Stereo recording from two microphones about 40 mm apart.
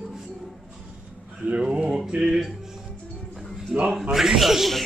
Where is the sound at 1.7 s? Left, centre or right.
Right.